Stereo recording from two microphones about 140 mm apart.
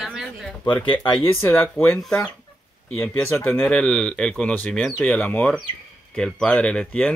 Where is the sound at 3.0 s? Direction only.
15° left (ahead or behind).